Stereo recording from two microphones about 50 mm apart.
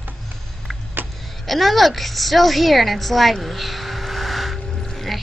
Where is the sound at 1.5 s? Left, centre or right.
Centre.